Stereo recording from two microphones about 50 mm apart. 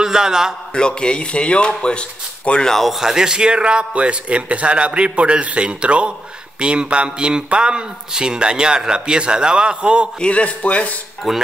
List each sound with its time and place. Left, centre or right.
0.0 s a man's voice: centre
0.7 s speech: centre
2.7 s speech: centre
3.0 s speech: centre
10.2 s speech: left
11.3 s speech: centre